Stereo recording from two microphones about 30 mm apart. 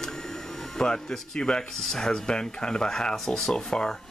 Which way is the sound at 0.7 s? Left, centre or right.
Left.